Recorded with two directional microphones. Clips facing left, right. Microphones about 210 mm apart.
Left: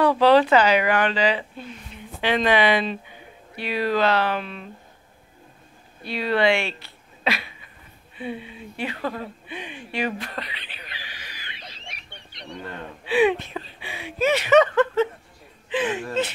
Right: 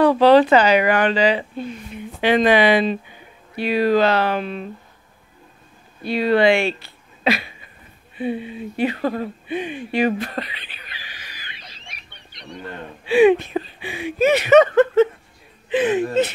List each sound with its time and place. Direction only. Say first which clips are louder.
0.2 s speech: right 3 dB; 40° right (ahead or behind)
6.0 s speech: right 5 dB; 45° right (ahead or behind)
8.2 s speech: right 8 dB; 40° right (ahead or behind)
13.0 s speech: right 6 dB; 45° right (ahead or behind)
15.7 s speech: right 6 dB; 55° right (ahead or behind)
16.0 s a sound: right 7 dB; 15° right (ahead or behind)